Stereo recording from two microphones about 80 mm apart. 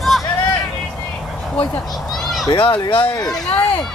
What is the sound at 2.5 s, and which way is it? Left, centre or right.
Speech, left.